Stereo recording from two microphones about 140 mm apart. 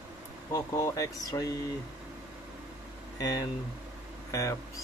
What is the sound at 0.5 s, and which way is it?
Speech, 20° left (ahead or behind).